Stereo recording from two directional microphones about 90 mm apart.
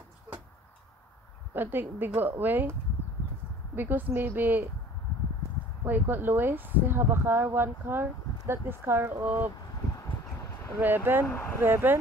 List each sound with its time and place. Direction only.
1.5 s a woman's voice: 25° right (ahead or behind)
3.7 s speech: 20° right (ahead or behind)
5.9 s speech: 25° right (ahead or behind)
9.9 s a sound: 35° left (ahead or behind)
10.8 s speech: 20° right (ahead or behind)
11.2 s speech: 20° left (ahead or behind)
11.6 s speech: 25° right (ahead or behind)